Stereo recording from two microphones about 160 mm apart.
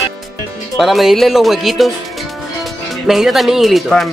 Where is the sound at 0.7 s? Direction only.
Centre (ahead or behind).